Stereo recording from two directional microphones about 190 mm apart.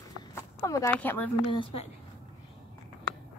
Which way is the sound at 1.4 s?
25° left (ahead or behind).